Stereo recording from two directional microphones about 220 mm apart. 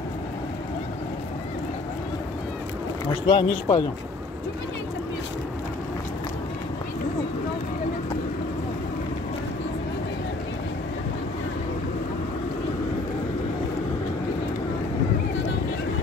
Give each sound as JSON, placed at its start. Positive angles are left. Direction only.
{"t": 3.1, "sound": "speech", "side_deg": 25}